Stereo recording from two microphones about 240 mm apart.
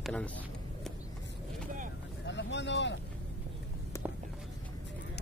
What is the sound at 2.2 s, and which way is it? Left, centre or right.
Boat, left.